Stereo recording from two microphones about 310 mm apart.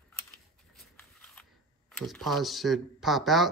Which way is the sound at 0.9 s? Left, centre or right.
Centre.